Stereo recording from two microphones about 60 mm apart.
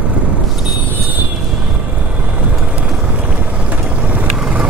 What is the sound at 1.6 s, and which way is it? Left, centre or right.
Vehicle, right.